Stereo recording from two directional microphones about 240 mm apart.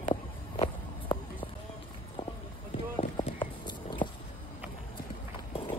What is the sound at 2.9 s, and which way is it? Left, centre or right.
Run, left.